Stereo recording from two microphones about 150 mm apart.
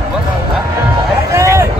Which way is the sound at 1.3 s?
20° right (ahead or behind).